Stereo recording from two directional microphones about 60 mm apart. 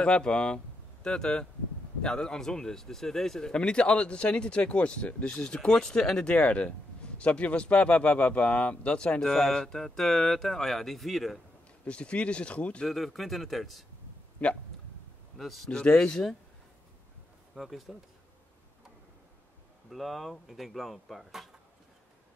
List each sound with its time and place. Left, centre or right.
0.0 s speech: centre
11.8 s speech: centre
12.8 s speech: centre
14.4 s speech: left
15.3 s speech: centre
15.7 s speech: centre
17.6 s speech: centre
19.9 s speech: centre